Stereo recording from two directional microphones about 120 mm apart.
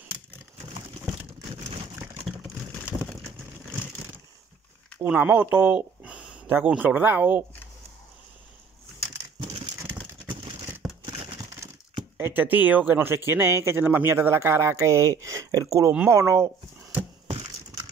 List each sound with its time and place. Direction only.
2.3 s a sound: 10° right (ahead or behind)
5.0 s speech: 10° right (ahead or behind)
10.8 s crumpling: 5° right (ahead or behind)
12.2 s speech: 20° right (ahead or behind)